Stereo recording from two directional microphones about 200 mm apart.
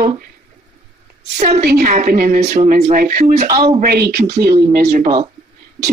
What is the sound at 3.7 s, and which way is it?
Speech, 50° right (ahead or behind).